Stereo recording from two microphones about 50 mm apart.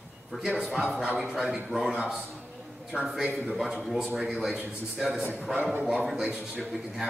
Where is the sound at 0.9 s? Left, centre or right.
Centre.